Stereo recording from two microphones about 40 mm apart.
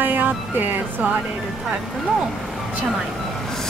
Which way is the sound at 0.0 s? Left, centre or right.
Right.